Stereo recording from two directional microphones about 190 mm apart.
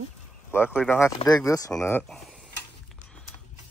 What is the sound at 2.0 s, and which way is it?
Speech, centre (ahead or behind).